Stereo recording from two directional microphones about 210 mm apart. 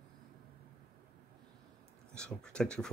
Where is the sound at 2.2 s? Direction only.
5° left (ahead or behind).